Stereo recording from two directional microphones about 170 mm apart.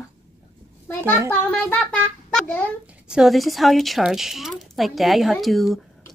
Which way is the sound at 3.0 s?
5° right (ahead or behind).